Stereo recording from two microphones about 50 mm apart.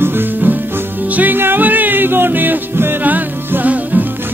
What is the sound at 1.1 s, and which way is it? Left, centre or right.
Music, right.